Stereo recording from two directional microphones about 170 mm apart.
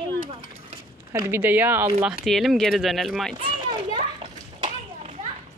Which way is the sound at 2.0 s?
Centre (ahead or behind).